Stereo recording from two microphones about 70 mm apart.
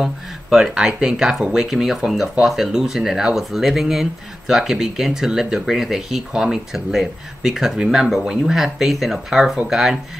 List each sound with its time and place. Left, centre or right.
0.0 s speech: centre